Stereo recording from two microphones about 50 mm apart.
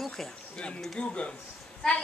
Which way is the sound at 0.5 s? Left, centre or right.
Centre.